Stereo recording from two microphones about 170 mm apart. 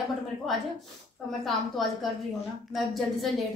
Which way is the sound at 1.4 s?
Centre (ahead or behind).